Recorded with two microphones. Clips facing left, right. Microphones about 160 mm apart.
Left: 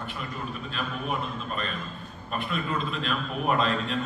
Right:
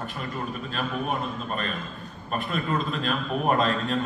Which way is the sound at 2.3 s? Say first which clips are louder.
Right 3 dB; 45° right (ahead or behind).